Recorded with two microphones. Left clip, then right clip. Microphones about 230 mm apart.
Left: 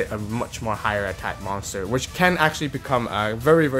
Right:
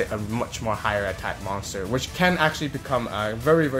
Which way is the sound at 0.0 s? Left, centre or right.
Centre.